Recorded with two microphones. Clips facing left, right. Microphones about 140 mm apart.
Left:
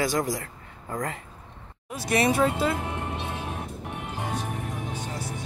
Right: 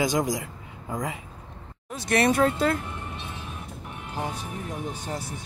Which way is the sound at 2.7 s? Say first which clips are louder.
Left 3 dB; 90° left.